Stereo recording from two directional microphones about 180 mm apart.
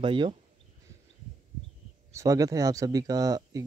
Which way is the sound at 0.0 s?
30° right (ahead or behind).